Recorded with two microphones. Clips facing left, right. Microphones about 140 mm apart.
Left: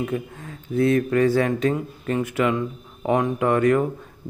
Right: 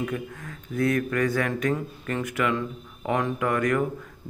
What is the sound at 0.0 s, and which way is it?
Speech, 25° left (ahead or behind).